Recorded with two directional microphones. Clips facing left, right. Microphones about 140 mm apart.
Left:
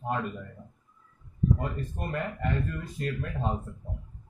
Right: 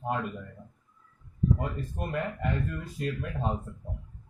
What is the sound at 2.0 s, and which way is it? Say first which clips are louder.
Speech: right 3 dB; 5° right (ahead or behind).